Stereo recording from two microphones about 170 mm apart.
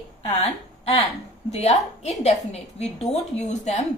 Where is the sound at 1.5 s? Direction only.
40° left (ahead or behind).